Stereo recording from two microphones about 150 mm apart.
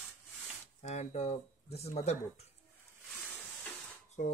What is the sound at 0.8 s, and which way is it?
Speech, 50° left (ahead or behind).